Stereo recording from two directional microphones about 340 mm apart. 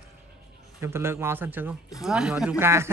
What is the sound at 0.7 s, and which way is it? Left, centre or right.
A man's voice, centre.